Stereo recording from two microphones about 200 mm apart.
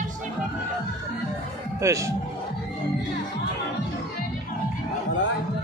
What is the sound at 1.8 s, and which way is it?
Speech, 15° right (ahead or behind).